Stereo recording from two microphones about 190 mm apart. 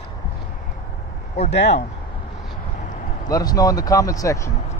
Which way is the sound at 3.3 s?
20° left (ahead or behind).